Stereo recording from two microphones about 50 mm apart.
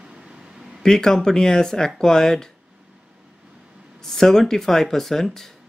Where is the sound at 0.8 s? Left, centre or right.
Centre.